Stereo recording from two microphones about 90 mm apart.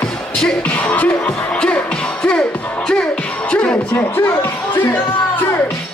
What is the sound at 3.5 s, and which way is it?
Speech, 15° left (ahead or behind).